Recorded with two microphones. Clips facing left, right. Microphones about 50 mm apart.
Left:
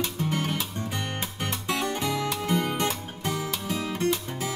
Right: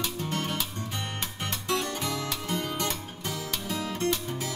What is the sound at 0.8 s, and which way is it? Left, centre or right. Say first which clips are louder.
Music: left 3 dB; left.